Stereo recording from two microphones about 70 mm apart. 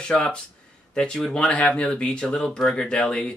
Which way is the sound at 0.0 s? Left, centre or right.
Centre.